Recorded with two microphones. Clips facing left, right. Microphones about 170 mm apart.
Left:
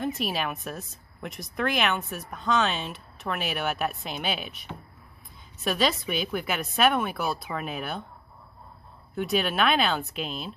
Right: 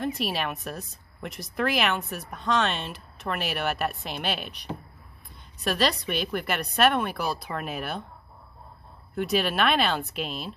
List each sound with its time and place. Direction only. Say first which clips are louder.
0.0 s a woman's voice: even; centre (ahead or behind)
9.1 s a woman's voice: right 1 dB; centre (ahead or behind)